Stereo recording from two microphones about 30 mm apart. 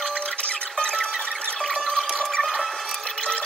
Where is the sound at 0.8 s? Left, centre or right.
Left.